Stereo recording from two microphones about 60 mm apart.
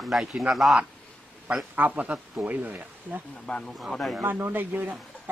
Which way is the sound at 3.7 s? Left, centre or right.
Centre.